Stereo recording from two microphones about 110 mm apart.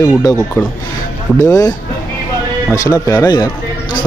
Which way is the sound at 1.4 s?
35° left (ahead or behind).